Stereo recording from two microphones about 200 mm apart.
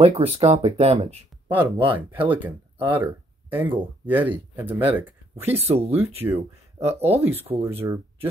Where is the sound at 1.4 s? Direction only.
10° right (ahead or behind).